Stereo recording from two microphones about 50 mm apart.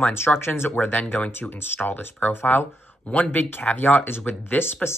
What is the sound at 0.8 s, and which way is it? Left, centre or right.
Speech, left.